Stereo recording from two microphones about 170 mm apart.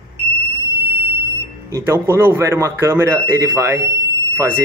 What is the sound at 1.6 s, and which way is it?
Speech, 15° right (ahead or behind).